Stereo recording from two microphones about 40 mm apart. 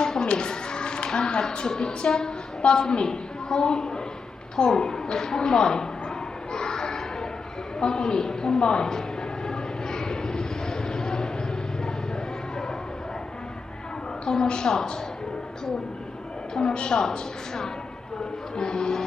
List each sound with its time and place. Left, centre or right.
0.0 s speech: left
4.6 s a sound: centre
7.8 s a woman's voice: centre
9.5 s a sound: centre
14.3 s a woman's voice: centre
16.5 s a woman's voice: left